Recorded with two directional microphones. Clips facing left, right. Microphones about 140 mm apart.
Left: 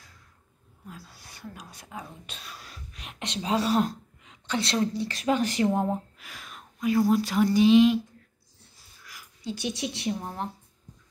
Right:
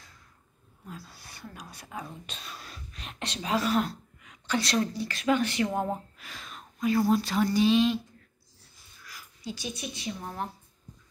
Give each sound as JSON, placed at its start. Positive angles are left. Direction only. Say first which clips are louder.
{"t": 0.8, "sound": "speech", "louder": "right 1 dB", "side_deg": 15}
{"t": 4.3, "sound": "a woman's voice", "louder": "even", "side_deg": 25}
{"t": 5.1, "sound": "speech", "louder": "right 3 dB", "side_deg": 35}
{"t": 6.1, "sound": "a sound", "louder": "right 1 dB", "side_deg": 10}
{"t": 7.1, "sound": "speech", "louder": "left 2 dB", "side_deg": 10}
{"t": 9.0, "sound": "a sound", "louder": "left 1 dB", "side_deg": 20}
{"t": 9.6, "sound": "a woman's voice", "louder": "left 6 dB", "side_deg": 75}
{"t": 10.2, "sound": "speech", "louder": "left 1 dB", "side_deg": 20}